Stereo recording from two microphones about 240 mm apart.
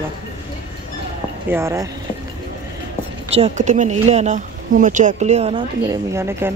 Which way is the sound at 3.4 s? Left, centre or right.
Right.